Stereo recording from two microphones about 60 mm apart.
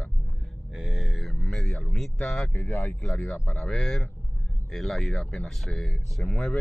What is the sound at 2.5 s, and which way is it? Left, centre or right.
Speech, left.